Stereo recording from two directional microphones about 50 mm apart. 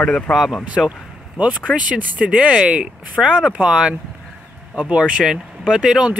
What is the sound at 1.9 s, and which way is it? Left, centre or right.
Speech, right.